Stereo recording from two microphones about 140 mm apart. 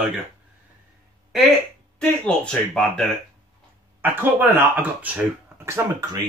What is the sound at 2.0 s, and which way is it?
Speech, 5° left (ahead or behind).